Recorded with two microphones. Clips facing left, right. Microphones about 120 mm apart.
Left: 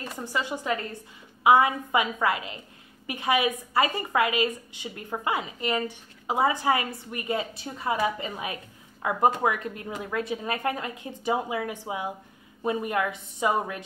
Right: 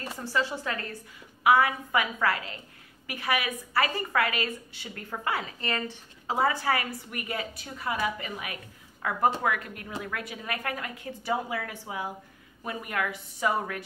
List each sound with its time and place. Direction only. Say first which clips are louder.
0.2 s a woman's voice: right 1 dB; 15° left (ahead or behind)